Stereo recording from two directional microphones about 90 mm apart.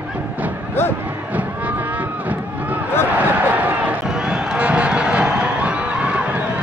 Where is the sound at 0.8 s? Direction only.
25° left (ahead or behind).